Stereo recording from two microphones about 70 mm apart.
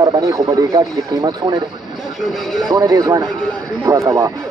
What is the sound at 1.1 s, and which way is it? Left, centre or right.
Speech, right.